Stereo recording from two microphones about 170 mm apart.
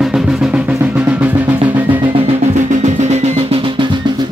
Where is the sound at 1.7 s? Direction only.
10° right (ahead or behind).